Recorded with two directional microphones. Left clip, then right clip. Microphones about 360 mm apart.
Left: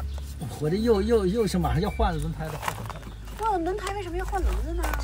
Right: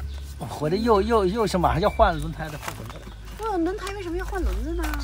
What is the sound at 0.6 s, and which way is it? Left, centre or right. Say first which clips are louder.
Speech: right 3 dB; centre.